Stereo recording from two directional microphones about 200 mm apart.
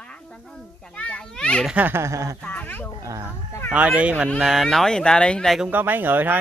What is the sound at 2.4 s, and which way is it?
Speech, 10° left (ahead or behind).